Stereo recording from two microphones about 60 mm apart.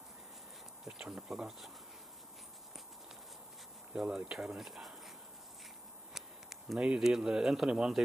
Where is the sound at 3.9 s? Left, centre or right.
Centre.